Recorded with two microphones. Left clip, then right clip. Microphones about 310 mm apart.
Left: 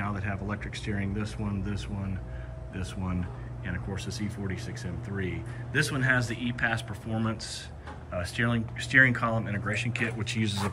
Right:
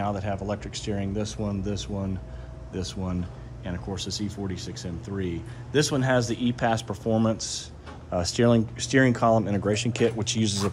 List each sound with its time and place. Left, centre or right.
0.0 s speech: centre